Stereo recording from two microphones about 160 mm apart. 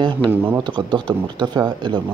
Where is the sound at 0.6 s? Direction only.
30° right (ahead or behind).